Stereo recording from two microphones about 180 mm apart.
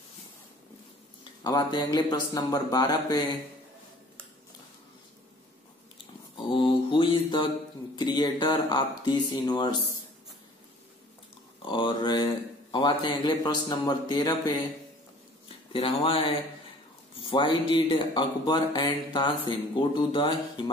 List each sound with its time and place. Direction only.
1.4 s speech: 25° left (ahead or behind)
6.3 s mantra: 30° left (ahead or behind)
7.9 s speech: 20° left (ahead or behind)
11.6 s speech: 25° left (ahead or behind)